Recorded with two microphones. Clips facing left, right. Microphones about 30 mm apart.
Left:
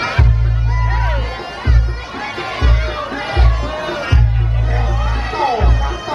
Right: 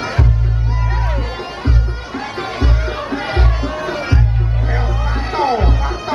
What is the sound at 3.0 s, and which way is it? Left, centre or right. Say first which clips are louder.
Music: right 2 dB; centre.